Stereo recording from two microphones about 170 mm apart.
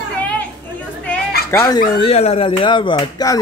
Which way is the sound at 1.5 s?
20° left (ahead or behind).